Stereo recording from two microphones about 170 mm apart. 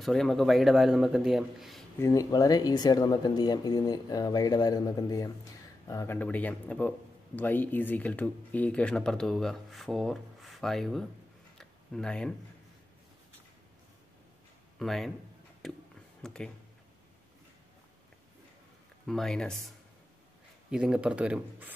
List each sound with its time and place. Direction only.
0.0 s speech: centre (ahead or behind)
2.0 s speech: 20° left (ahead or behind); by 11.1 s centre (ahead or behind)
11.5 s a sound: 5° left (ahead or behind)
14.8 s speech: centre (ahead or behind)
15.6 s a sound: centre (ahead or behind)
16.2 s speech: 5° left (ahead or behind)
19.0 s speech: 5° left (ahead or behind)
20.7 s speech: 5° right (ahead or behind)